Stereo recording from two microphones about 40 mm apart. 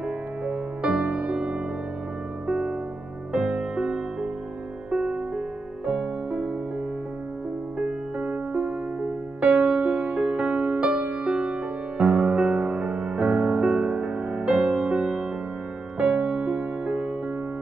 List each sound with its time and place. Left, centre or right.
0.8 s music: right
3.3 s music: right
7.8 s music: right
12.0 s music: right